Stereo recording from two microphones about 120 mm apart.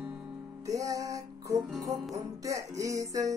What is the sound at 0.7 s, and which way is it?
Music, 25° right (ahead or behind).